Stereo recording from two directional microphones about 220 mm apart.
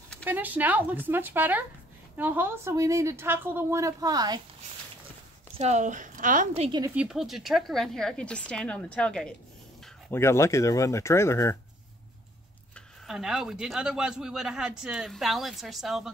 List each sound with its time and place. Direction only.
0.2 s speech: 10° right (ahead or behind)
5.6 s a woman's voice: 30° right (ahead or behind)
6.8 s speech: 5° right (ahead or behind); by 11.5 s 10° left (ahead or behind)
12.7 s speech: centre (ahead or behind)